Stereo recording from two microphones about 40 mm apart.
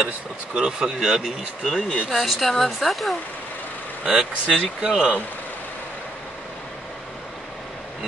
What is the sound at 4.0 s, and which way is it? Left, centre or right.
Speech, right.